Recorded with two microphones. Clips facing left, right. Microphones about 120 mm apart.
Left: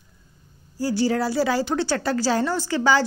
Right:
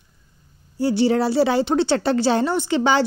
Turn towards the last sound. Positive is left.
turn(degrees=-20)  # may be behind; listen again after turning